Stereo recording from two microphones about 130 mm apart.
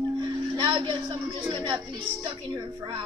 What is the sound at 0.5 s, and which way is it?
A woman's voice, 40° right (ahead or behind).